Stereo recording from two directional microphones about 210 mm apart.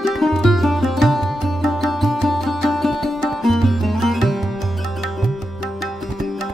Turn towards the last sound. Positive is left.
turn(degrees=0)  # may be behind; listen again after turning